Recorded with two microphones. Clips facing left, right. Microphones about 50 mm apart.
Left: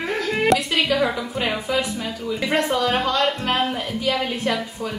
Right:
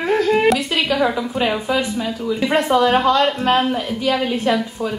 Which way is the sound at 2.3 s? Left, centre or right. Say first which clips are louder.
Right 4 dB; centre.